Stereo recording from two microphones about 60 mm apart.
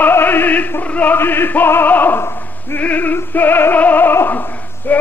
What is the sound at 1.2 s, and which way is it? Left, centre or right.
Opera, left.